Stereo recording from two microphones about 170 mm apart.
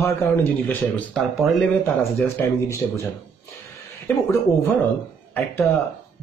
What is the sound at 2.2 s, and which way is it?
Speech, 15° left (ahead or behind).